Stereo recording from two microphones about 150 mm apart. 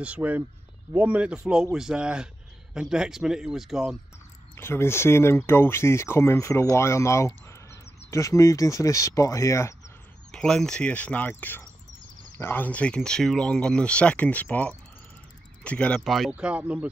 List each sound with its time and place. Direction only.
0.0 s speech: 10° right (ahead or behind)
4.6 s speech: 15° left (ahead or behind)
10.3 s speech: 5° left (ahead or behind)